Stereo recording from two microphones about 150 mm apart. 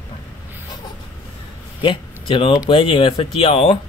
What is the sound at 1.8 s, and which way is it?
Speech, 35° left (ahead or behind).